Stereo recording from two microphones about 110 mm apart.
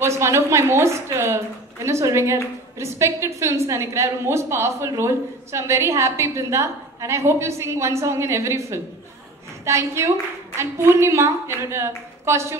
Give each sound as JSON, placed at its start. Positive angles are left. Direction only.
{"t": 0.0, "sound": "a woman's voice", "side_deg": -25}